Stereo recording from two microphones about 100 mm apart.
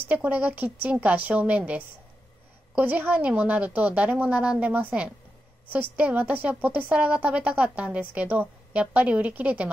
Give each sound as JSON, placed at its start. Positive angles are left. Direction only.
{"t": 0.1, "sound": "a woman's voice", "side_deg": -15}